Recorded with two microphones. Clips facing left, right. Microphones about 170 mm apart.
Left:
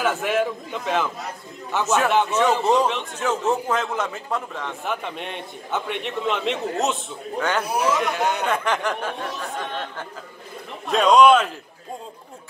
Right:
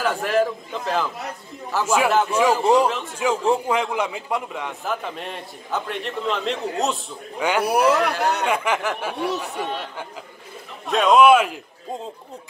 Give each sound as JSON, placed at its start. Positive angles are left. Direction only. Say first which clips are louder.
{"t": 0.0, "sound": "a man's voice", "louder": "right 1 dB", "side_deg": 0}
{"t": 4.8, "sound": "a man's voice", "louder": "even", "side_deg": 0}
{"t": 7.3, "sound": "a man's voice", "louder": "right 2 dB", "side_deg": -10}
{"t": 7.6, "sound": "speech", "louder": "right 4 dB", "side_deg": -65}
{"t": 8.5, "sound": "a man's voice", "louder": "right 1 dB", "side_deg": -10}